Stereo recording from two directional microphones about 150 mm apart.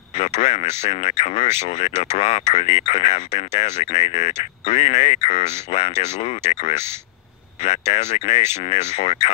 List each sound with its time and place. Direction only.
0.1 s speech: 50° left (ahead or behind)